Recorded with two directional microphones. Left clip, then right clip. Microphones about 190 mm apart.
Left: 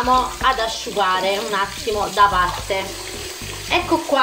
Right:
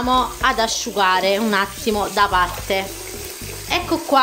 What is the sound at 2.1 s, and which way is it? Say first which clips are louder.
Frying: left 3 dB; 70° right (ahead or behind).